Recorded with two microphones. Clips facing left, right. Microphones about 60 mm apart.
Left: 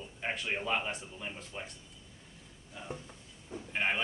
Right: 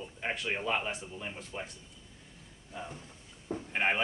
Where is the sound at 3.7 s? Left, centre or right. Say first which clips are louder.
Right 2 dB; centre.